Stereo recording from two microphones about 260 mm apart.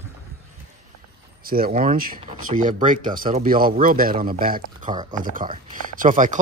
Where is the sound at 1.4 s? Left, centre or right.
Right.